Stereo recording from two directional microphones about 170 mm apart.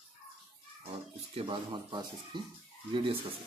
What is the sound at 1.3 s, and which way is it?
Speech, 30° right (ahead or behind).